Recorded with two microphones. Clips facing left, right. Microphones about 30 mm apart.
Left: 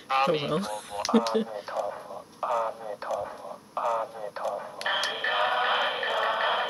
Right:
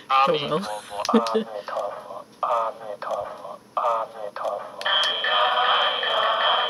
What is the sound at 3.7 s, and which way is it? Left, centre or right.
Radio, centre.